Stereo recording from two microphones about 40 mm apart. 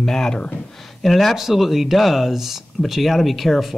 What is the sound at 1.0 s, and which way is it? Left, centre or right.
Speech, centre.